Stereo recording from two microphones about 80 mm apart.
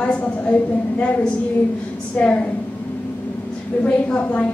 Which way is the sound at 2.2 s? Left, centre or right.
Centre.